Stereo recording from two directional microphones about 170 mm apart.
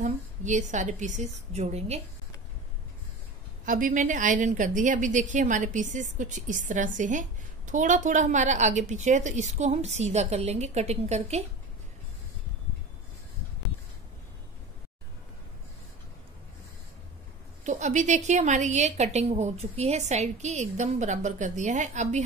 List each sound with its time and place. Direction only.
0.0 s a woman's voice: 45° right (ahead or behind)
3.6 s a woman's voice: 50° right (ahead or behind)
17.6 s a woman's voice: 45° right (ahead or behind)